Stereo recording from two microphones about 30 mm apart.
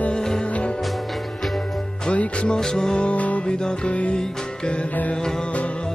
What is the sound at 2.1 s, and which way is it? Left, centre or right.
Music, left.